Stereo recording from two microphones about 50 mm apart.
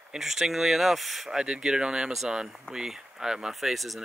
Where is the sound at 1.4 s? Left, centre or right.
Centre.